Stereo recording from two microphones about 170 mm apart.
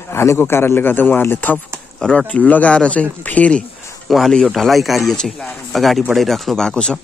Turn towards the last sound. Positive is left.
turn(degrees=5)  # may be behind; listen again after turning